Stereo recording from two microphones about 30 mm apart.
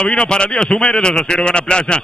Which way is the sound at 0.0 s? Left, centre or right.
Left.